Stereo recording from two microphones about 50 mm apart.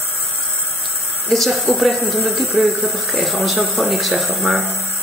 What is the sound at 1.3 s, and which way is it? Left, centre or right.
Speech, centre.